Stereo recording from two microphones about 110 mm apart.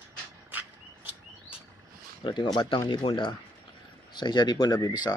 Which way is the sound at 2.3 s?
45° left (ahead or behind).